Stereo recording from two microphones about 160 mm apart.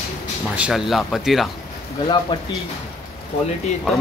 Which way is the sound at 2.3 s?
30° left (ahead or behind).